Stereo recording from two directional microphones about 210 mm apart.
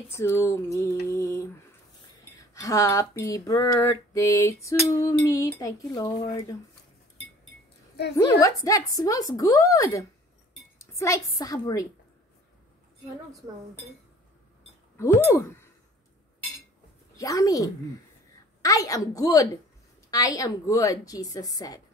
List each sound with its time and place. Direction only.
0.1 s speech: 10° left (ahead or behind)
8.2 s speech: 15° left (ahead or behind)
15.0 s speech: 10° left (ahead or behind)
17.2 s speech: 15° left (ahead or behind)